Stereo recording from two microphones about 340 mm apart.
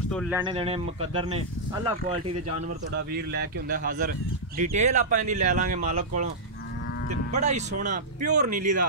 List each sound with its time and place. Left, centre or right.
0.1 s speech: centre
0.4 s speech: centre
3.1 s speech: right